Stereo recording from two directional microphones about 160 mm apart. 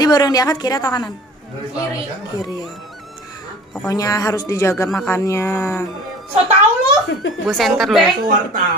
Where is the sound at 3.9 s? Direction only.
20° left (ahead or behind).